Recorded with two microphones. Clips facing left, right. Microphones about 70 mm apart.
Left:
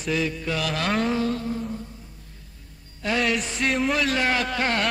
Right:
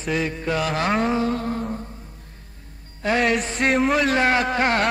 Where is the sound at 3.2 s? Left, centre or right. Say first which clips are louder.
Right 3 dB; right.